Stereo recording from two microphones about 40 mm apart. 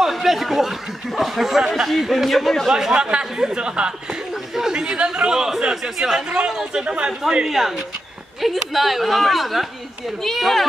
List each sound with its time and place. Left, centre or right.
0.0 s speech: centre
2.7 s speech: centre
5.9 s speech: centre
7.2 s speech: centre